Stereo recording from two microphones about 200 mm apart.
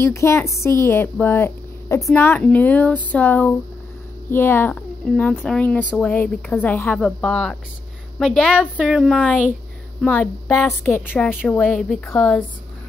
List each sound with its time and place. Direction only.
0.0 s a woman's voice: 15° left (ahead or behind)